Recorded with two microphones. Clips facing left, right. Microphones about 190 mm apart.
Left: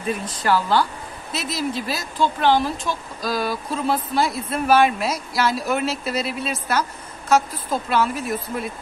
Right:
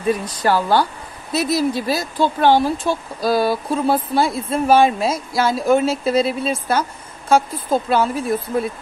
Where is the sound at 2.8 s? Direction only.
30° right (ahead or behind).